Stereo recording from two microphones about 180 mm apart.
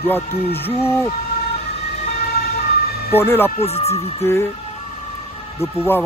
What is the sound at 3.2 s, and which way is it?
Speech, 10° left (ahead or behind).